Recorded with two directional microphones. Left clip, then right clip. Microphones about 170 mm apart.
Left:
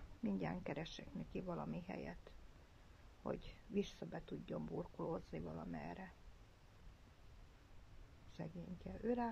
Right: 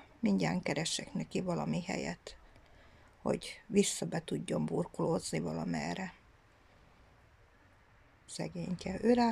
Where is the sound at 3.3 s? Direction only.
Centre (ahead or behind).